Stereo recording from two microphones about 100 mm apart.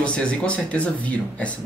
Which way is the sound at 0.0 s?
10° left (ahead or behind).